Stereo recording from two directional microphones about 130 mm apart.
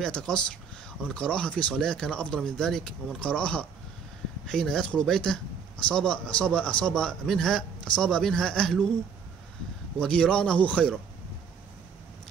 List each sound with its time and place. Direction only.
0.0 s a man's voice: 5° left (ahead or behind)
9.9 s a man's voice: 5° left (ahead or behind)